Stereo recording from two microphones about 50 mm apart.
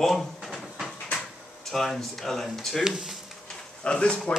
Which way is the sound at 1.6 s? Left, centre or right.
Centre.